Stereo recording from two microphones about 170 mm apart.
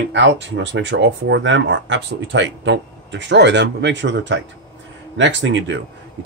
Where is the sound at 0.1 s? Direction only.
90° right.